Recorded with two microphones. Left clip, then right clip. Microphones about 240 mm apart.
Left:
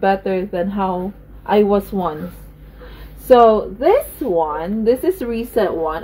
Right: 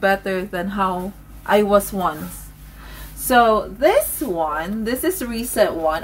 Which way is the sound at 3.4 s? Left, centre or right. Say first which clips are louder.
Left 3 dB; centre.